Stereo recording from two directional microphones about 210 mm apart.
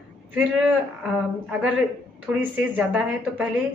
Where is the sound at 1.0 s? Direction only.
5° right (ahead or behind).